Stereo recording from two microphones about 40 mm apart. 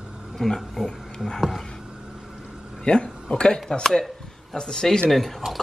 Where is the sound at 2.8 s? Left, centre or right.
Left.